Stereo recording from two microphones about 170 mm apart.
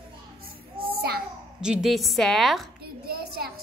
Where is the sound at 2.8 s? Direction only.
65° right (ahead or behind).